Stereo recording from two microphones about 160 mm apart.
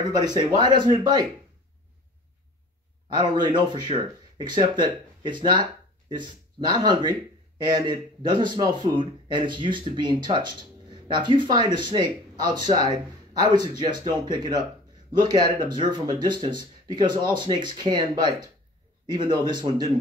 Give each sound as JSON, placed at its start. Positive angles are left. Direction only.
{"t": 0.1, "sound": "a man's voice", "side_deg": -25}
{"t": 3.2, "sound": "a man's voice", "side_deg": -30}